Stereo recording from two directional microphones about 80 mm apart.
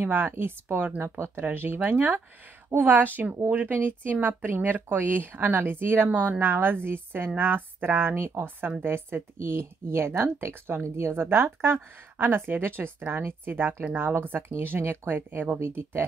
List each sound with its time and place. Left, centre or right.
0.0 s speech: right